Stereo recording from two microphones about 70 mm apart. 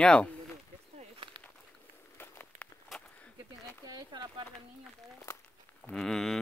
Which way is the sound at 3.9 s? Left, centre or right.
Right.